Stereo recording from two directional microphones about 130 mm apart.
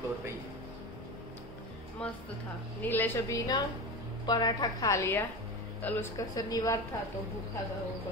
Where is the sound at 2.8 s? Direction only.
15° left (ahead or behind).